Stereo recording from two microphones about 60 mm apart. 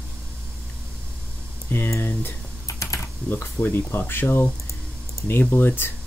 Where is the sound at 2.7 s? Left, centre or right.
Left.